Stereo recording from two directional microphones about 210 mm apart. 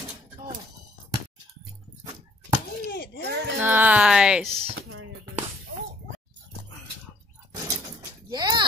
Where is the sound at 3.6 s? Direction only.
10° right (ahead or behind).